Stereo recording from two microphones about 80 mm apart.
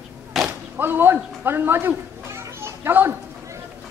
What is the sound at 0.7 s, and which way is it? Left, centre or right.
A child's voice, right.